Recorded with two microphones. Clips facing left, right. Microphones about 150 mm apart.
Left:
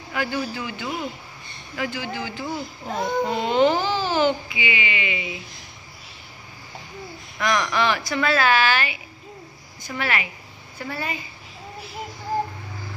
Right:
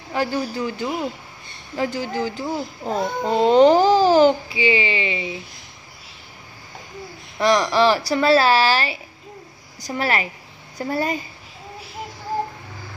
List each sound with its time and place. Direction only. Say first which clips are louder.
0.1 s speech: right 3 dB; 35° right (ahead or behind)
7.3 s speech: right 5 dB; 30° right (ahead or behind)